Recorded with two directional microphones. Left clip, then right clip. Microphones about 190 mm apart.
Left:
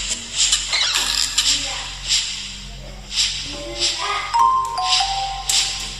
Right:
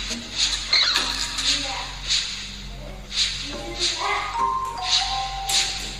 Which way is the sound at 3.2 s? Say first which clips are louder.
Left 3 dB; 10° right (ahead or behind).